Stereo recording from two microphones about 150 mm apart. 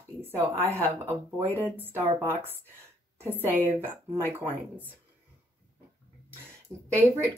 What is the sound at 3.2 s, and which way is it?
Speech, 15° right (ahead or behind).